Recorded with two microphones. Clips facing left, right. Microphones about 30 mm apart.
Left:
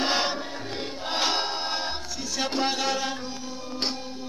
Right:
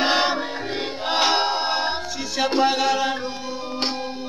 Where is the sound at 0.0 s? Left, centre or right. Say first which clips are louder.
Right 6 dB; right.